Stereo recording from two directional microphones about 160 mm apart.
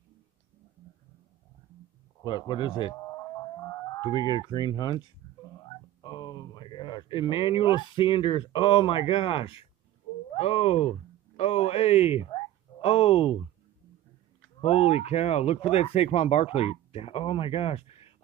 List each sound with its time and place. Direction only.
2.2 s speech: 30° left (ahead or behind)
6.0 s speech: 30° left (ahead or behind)
14.6 s speech: 40° left (ahead or behind)